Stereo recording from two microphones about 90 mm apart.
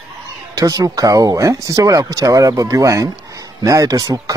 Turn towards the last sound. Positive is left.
turn(degrees=-40)  # may be behind; listen again after turning